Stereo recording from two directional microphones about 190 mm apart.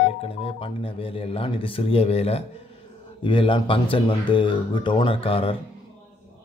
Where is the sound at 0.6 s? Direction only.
30° left (ahead or behind).